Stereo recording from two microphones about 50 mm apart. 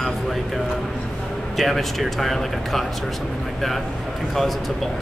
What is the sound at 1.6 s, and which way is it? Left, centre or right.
Speech, centre.